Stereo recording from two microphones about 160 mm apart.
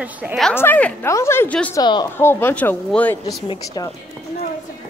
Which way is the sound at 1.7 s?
25° left (ahead or behind).